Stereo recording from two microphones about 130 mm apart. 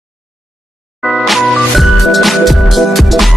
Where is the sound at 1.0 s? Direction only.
Centre (ahead or behind).